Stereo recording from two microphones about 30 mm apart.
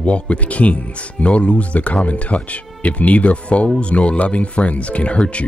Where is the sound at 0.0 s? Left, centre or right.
Left.